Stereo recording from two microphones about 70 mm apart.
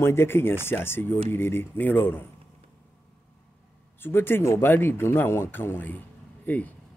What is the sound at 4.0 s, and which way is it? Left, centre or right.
Speech, left.